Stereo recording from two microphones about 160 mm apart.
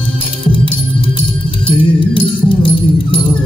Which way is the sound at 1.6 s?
30° left (ahead or behind).